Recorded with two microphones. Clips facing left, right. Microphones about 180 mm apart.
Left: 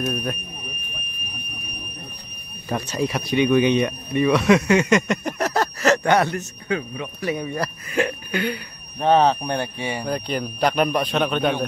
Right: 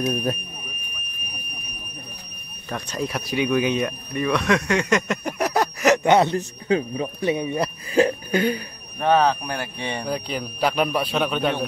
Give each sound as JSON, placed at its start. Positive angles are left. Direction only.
{"t": 0.1, "sound": "speech", "side_deg": -35}
{"t": 2.7, "sound": "speech", "side_deg": 5}
{"t": 7.9, "sound": "a sound", "side_deg": -35}
{"t": 9.0, "sound": "speech", "side_deg": 25}
{"t": 9.8, "sound": "speech", "side_deg": 10}
{"t": 10.0, "sound": "speech", "side_deg": -5}